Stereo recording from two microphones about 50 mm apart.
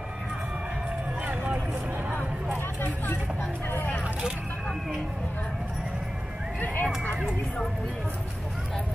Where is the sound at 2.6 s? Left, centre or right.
Left.